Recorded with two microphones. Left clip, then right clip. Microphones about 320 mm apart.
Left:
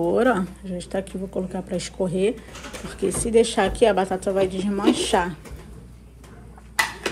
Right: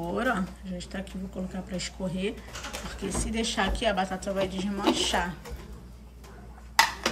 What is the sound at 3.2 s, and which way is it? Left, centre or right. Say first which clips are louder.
Speech: left 13 dB; right.